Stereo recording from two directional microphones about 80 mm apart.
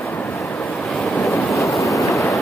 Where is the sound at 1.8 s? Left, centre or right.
Left.